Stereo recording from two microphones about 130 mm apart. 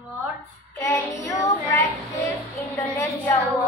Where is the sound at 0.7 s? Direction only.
25° left (ahead or behind).